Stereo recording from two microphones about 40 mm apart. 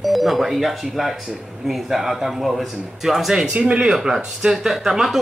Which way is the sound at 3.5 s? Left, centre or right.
Right.